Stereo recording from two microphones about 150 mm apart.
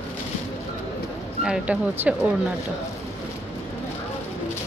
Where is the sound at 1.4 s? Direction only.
5° right (ahead or behind).